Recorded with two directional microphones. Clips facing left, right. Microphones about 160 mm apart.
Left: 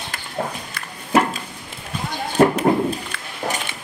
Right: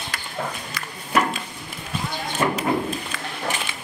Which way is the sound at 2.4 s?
55° left (ahead or behind).